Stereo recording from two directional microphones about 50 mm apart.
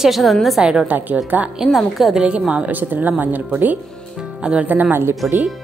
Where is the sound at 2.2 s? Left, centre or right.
Right.